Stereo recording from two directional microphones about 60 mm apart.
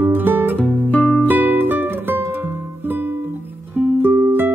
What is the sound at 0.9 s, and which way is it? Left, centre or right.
Music, centre.